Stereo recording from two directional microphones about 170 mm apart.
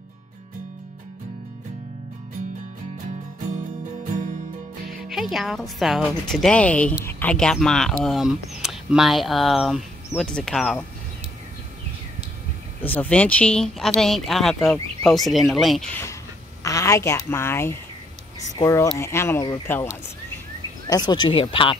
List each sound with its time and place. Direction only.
4.0 s music: 50° right (ahead or behind)
5.0 s speech: centre (ahead or behind)
12.8 s speech: 10° left (ahead or behind)
16.6 s a woman's voice: 20° left (ahead or behind)